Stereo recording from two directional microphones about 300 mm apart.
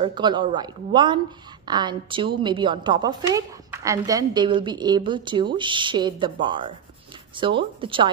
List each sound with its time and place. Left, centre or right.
0.0 s speech: centre